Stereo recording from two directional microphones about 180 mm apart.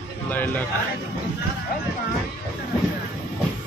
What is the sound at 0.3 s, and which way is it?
Speech, 10° left (ahead or behind).